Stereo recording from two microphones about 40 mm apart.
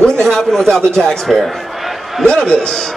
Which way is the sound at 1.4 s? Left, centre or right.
Centre.